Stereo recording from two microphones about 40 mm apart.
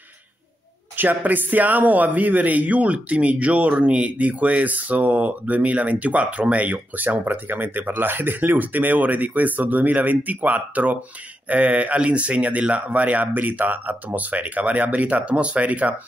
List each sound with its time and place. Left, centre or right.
0.9 s a man's voice: right